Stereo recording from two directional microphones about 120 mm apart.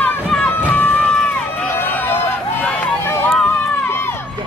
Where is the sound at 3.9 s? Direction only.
20° left (ahead or behind).